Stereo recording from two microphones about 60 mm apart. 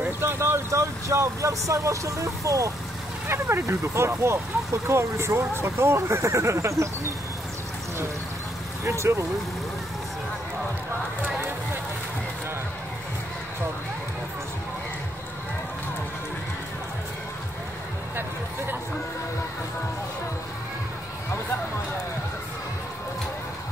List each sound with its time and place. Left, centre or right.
0.0 s speech: right
3.3 s speech: right
8.8 s speech: right